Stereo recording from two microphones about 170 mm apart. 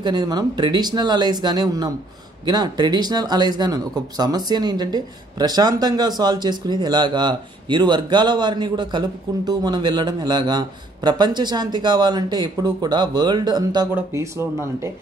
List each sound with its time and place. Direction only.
0.0 s speech: 25° right (ahead or behind)